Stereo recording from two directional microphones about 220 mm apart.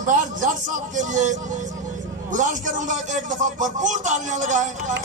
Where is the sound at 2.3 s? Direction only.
35° right (ahead or behind).